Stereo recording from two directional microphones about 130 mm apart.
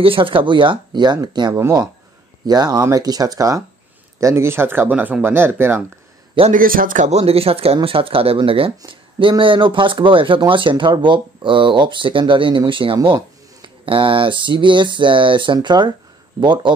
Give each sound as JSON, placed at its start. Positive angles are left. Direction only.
{"t": 0.0, "sound": "speech", "side_deg": -45}
{"t": 6.5, "sound": "speech", "side_deg": -90}
{"t": 7.2, "sound": "speech", "side_deg": -50}